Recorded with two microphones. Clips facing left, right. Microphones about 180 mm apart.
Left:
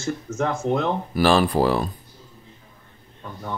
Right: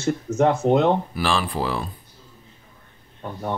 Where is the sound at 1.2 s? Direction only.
40° left (ahead or behind).